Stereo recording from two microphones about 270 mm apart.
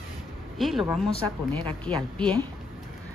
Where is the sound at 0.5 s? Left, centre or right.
Centre.